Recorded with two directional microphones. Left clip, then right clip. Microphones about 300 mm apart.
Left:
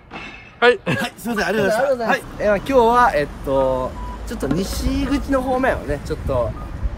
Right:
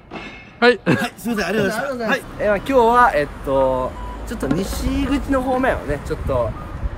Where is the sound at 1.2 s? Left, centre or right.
Centre.